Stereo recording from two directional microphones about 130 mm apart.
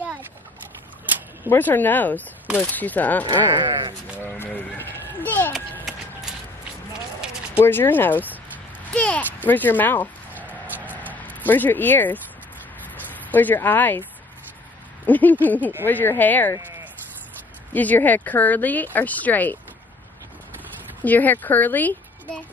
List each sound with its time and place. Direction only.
1.5 s speech: 15° left (ahead or behind)
3.5 s speech: 40° right (ahead or behind)
4.2 s sheep: 15° left (ahead or behind)
5.5 s run: 5° right (ahead or behind)
7.5 s speech: 15° left (ahead or behind)
8.9 s a sound: 10° left (ahead or behind)
11.2 s speech: 15° left (ahead or behind)
15.0 s speech: 15° left (ahead or behind)
17.7 s speech: 15° left (ahead or behind)
21.0 s a woman's voice: 15° left (ahead or behind)